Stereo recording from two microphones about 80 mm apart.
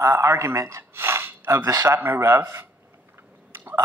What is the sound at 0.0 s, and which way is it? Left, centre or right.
Speech, right.